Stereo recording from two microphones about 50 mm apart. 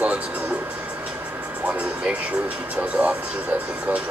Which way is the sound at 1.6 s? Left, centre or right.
Right.